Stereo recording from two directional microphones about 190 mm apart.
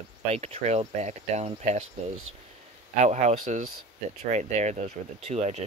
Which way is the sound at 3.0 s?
35° right (ahead or behind).